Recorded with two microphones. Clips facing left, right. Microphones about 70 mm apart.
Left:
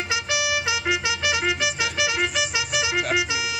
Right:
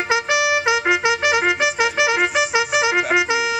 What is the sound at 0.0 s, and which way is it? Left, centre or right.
Music, right.